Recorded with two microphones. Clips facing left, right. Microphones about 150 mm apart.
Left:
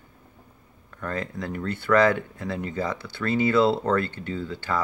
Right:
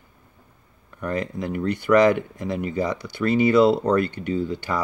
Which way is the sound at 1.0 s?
15° right (ahead or behind).